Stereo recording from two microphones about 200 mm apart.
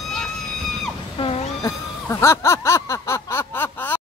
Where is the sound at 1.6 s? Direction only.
15° left (ahead or behind).